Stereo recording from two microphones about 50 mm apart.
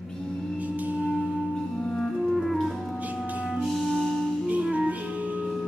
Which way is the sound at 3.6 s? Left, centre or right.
Centre.